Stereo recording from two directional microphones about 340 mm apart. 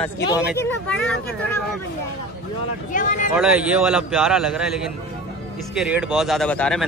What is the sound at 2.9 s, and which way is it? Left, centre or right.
Speech, left.